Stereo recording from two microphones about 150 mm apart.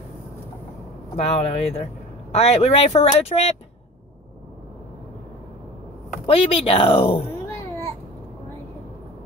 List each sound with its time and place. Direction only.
1.1 s speech: 45° left (ahead or behind)
6.2 s speech: 40° left (ahead or behind)